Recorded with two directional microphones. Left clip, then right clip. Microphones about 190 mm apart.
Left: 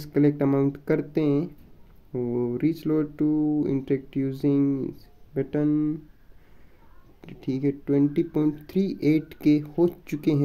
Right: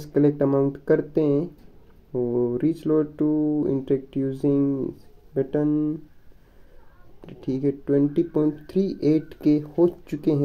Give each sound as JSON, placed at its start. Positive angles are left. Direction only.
{"t": 0.0, "sound": "speech", "side_deg": 25}
{"t": 7.2, "sound": "speech", "side_deg": 25}